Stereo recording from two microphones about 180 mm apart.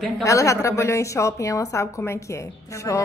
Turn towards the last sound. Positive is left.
turn(degrees=20)  # may be behind; listen again after turning